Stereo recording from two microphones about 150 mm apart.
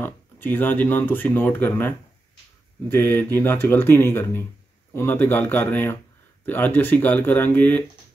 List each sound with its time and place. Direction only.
0.0 s speech: 15° left (ahead or behind)